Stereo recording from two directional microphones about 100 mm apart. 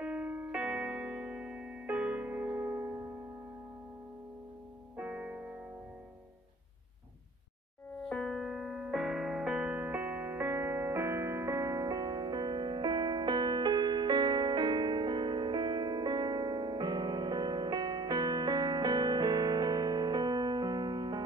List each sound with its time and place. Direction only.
0.0 s keyboard: 10° right (ahead or behind)
4.9 s music: 15° right (ahead or behind)
8.1 s music: 5° left (ahead or behind); by 21.2 s 45° right (ahead or behind)